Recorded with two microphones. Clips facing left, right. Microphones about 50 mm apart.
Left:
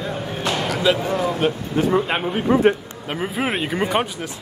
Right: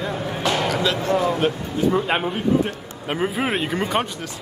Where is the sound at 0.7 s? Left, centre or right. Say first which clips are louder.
Left 2 dB; centre.